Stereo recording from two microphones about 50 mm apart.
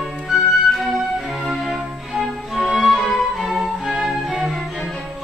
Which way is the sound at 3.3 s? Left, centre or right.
Centre.